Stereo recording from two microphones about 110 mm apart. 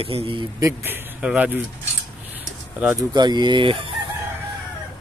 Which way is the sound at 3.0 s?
40° right (ahead or behind).